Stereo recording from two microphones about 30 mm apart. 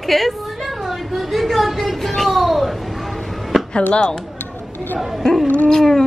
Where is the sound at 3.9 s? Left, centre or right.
Left.